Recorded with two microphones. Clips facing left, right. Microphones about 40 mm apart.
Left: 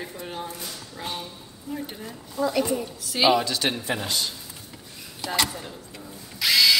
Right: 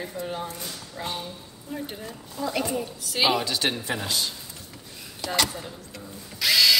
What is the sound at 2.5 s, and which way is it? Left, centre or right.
Speech, centre.